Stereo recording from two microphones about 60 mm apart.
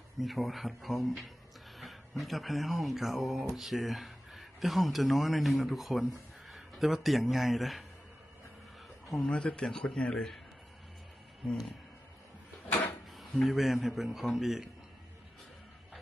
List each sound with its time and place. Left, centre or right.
0.2 s speech: centre
9.2 s a man's voice: centre
13.1 s speech: centre